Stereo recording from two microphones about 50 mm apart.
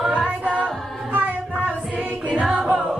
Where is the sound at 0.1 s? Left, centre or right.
Right.